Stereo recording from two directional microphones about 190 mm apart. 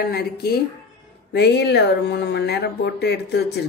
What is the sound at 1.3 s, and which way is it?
Speech, 60° left (ahead or behind).